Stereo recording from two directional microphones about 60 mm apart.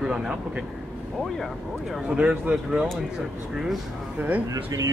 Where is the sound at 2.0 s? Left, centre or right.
Right.